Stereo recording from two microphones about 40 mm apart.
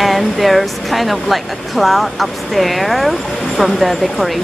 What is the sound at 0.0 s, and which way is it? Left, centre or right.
Speech, centre.